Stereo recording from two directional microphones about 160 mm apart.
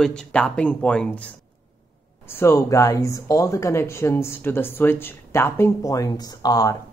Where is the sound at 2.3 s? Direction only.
15° left (ahead or behind).